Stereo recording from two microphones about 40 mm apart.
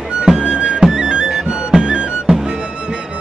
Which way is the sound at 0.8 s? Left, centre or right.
Centre.